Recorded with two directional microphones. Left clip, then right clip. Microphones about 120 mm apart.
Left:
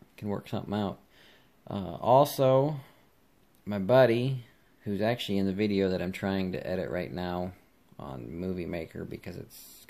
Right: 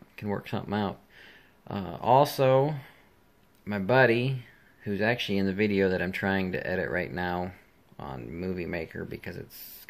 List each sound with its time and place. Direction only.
0.1 s speech: 25° left (ahead or behind)